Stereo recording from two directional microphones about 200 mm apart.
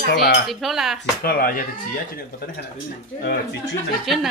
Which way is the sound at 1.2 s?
50° left (ahead or behind).